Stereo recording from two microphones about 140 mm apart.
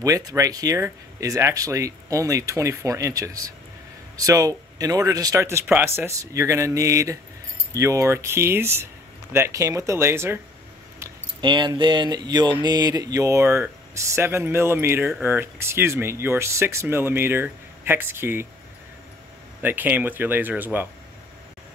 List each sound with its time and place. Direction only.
0.0 s speech: 25° right (ahead or behind)
11.4 s speech: 30° right (ahead or behind); by 18.5 s 15° right (ahead or behind)
19.6 s speech: 15° right (ahead or behind)